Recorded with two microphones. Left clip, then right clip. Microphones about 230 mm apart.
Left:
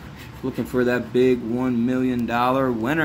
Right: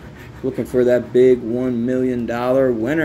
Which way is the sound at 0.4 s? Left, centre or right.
Centre.